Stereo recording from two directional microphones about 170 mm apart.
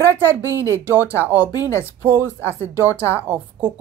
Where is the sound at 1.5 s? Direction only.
20° left (ahead or behind).